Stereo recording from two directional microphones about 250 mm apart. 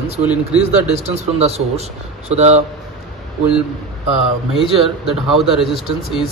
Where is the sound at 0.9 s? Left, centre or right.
Right.